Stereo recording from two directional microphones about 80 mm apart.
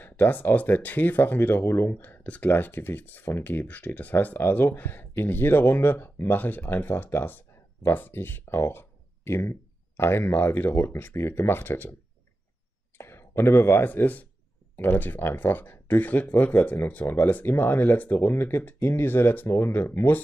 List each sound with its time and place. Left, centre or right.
0.0 s speech: left
12.9 s speech: left